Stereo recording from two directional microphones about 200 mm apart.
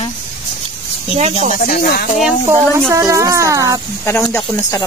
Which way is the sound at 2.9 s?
15° right (ahead or behind).